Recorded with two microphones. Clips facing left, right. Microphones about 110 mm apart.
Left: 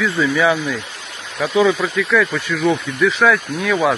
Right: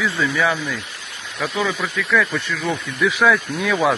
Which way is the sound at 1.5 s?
30° left (ahead or behind).